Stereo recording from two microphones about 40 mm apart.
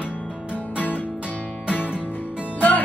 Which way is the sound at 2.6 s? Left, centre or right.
Left.